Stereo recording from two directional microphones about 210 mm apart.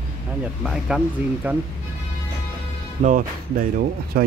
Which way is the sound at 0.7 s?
5° right (ahead or behind).